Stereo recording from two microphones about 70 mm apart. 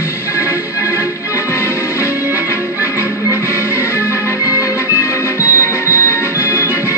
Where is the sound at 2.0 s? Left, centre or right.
Right.